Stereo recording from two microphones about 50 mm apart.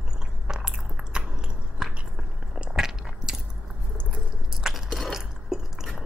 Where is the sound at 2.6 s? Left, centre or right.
Centre.